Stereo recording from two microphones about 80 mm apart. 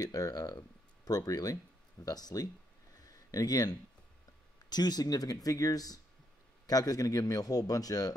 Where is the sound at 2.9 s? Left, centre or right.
Left.